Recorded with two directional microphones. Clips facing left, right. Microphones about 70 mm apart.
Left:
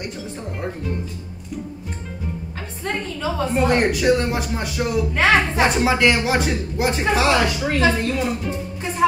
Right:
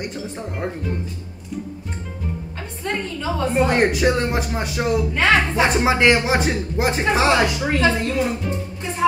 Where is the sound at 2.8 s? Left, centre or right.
Centre.